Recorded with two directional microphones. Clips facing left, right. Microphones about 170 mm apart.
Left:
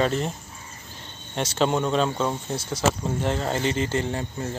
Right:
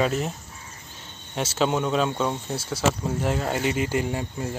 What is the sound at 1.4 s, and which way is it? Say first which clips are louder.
Speech: left 1 dB; 5° right (ahead or behind).